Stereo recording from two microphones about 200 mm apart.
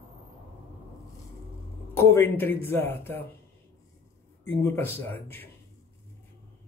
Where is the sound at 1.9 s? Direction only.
10° left (ahead or behind).